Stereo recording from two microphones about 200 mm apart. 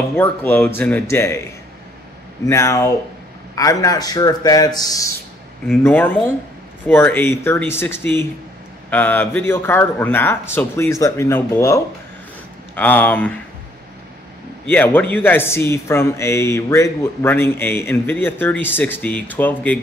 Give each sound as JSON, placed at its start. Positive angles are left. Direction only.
{"t": 0.1, "sound": "speech", "side_deg": 10}
{"t": 2.4, "sound": "speech", "side_deg": 15}
{"t": 14.7, "sound": "speech", "side_deg": 10}